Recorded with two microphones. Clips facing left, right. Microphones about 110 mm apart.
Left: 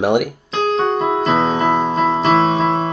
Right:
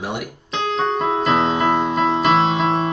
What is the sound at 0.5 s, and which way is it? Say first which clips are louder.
Keyboard: left 4 dB; 40° left (ahead or behind).